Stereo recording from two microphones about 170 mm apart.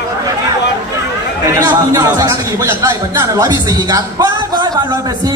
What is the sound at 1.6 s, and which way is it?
Speech, 20° right (ahead or behind).